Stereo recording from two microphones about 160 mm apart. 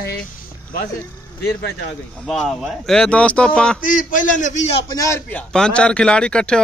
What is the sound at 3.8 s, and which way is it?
Speech, 60° left (ahead or behind).